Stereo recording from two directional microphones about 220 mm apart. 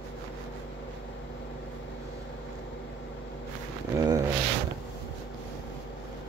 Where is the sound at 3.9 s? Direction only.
15° right (ahead or behind).